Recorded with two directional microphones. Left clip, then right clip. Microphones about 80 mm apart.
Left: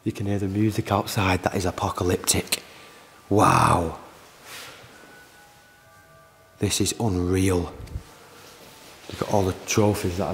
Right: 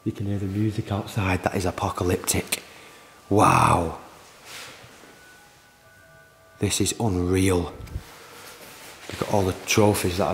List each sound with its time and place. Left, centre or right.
0.0 s speech: left
0.6 s speech: left
1.1 s speech: centre
6.6 s speech: centre
9.1 s speech: centre